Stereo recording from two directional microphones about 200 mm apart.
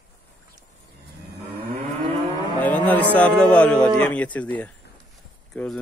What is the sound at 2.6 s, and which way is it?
Speech, 10° left (ahead or behind).